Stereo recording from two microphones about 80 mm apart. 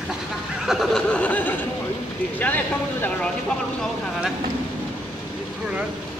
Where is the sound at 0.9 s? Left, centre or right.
Centre.